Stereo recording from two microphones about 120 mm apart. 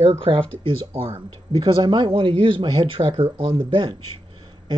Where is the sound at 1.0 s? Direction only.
40° right (ahead or behind).